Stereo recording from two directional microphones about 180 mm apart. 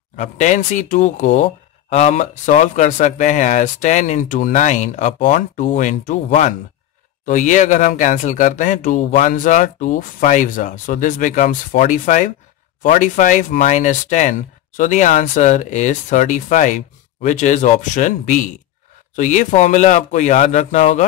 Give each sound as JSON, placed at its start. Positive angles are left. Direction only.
{"t": 0.1, "sound": "speech", "side_deg": 40}